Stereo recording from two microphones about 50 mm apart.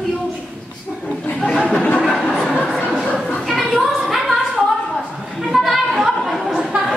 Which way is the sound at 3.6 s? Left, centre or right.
Centre.